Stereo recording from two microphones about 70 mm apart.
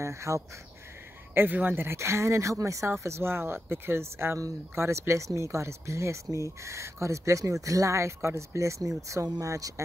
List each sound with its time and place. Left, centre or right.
0.0 s speech: right
1.3 s speech: right